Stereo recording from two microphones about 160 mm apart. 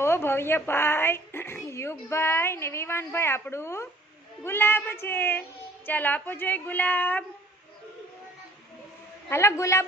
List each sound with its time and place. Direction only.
0.0 s speech: 15° left (ahead or behind)
9.3 s speech: 15° left (ahead or behind)